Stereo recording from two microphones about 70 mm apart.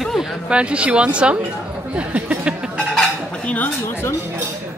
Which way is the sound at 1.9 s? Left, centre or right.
Centre.